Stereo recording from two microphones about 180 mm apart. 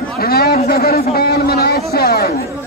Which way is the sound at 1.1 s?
60° left (ahead or behind).